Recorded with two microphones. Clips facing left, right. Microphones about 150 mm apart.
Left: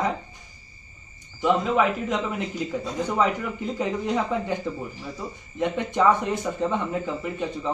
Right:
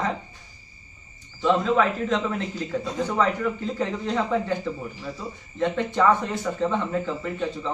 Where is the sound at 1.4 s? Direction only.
15° left (ahead or behind).